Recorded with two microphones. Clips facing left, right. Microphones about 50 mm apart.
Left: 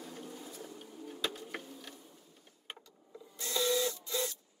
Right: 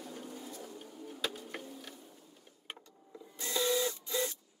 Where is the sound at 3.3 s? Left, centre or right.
Right.